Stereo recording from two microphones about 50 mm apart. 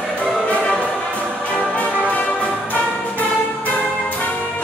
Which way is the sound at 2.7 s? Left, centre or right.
Left.